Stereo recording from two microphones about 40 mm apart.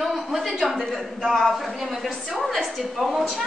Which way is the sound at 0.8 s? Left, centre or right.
Centre.